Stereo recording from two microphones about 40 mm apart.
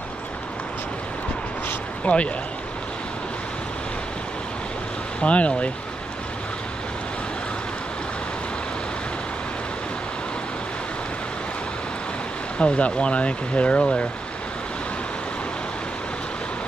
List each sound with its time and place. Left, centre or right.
2.1 s speech: left
5.2 s speech: left
12.5 s speech: left